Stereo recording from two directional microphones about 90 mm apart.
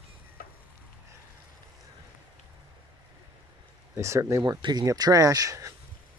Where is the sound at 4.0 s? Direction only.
35° right (ahead or behind).